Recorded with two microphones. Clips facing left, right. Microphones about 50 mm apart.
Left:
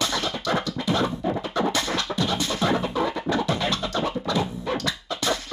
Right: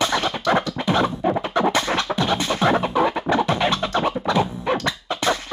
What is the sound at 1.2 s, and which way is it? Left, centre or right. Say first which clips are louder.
Music: right 5 dB; right.